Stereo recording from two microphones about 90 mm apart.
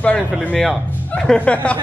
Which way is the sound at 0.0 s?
10° left (ahead or behind).